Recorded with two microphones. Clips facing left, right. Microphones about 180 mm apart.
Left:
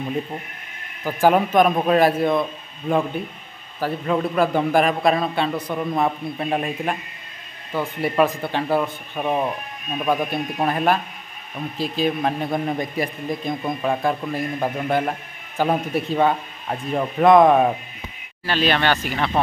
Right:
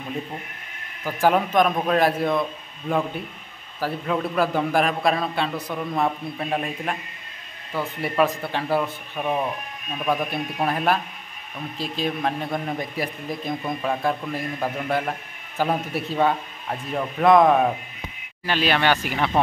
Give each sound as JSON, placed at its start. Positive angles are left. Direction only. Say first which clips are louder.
{"t": 1.0, "sound": "a man's voice", "louder": "left 3 dB", "side_deg": 5}
{"t": 9.2, "sound": "speech", "louder": "left 2 dB", "side_deg": 15}
{"t": 10.0, "sound": "a man's voice", "louder": "left 2 dB", "side_deg": 0}
{"t": 18.4, "sound": "speech", "louder": "left 1 dB", "side_deg": -10}